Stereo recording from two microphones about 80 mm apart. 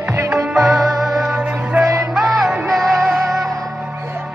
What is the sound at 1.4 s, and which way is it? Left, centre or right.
Music, centre.